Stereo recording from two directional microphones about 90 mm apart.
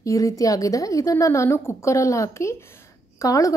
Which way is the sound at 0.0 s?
40° left (ahead or behind).